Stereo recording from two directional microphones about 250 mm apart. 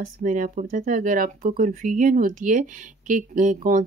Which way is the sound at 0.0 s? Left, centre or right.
Right.